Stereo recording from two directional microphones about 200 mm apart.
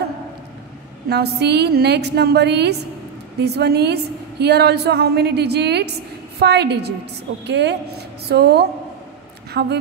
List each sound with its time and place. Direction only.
1.0 s a woman's voice: 55° right (ahead or behind)